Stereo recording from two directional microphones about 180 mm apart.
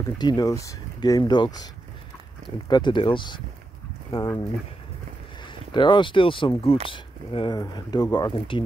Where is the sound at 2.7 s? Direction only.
25° left (ahead or behind).